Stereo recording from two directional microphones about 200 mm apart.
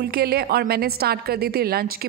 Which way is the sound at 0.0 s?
50° right (ahead or behind).